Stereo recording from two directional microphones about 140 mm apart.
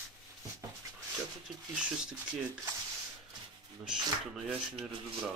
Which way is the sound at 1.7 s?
5° right (ahead or behind).